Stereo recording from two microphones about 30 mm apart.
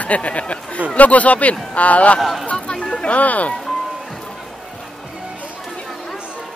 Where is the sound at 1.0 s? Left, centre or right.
Left.